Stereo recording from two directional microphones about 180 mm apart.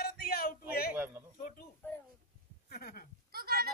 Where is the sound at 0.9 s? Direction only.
10° right (ahead or behind).